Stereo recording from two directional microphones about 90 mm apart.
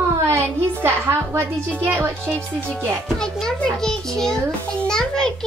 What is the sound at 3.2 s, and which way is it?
A child's voice, 5° left (ahead or behind).